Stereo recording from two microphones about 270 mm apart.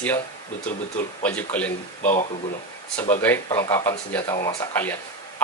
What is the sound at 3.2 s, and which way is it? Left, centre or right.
Speech, centre.